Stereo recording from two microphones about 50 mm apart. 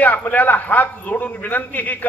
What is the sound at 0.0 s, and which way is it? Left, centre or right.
A man's voice, left.